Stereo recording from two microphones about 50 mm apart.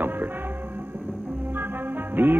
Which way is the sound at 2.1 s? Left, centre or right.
Right.